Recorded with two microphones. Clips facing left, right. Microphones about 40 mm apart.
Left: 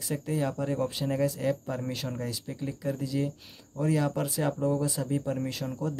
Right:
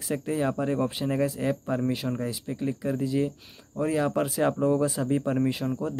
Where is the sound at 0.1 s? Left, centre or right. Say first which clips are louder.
Right 3 dB; right.